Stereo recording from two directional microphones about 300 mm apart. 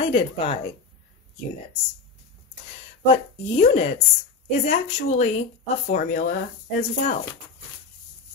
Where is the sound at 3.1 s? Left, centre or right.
Left.